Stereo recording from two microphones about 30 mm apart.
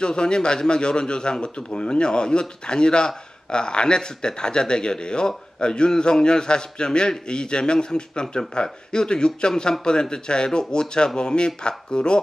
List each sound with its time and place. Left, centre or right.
0.0 s speech: left